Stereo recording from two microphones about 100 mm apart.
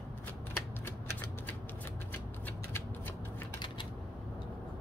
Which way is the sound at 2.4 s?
20° left (ahead or behind).